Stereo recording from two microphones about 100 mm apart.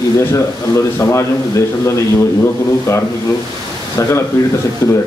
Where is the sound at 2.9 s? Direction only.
30° left (ahead or behind).